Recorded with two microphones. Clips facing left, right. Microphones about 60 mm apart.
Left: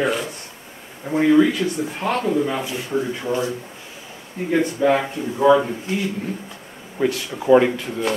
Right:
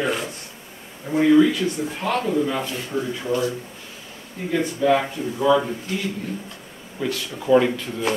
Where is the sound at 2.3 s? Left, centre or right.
Centre.